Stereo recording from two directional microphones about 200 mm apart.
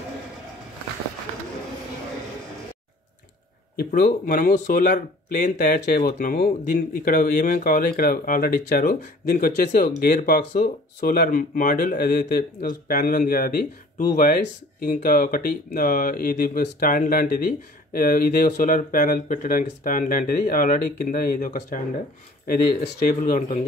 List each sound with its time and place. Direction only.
3.9 s speech: 45° left (ahead or behind)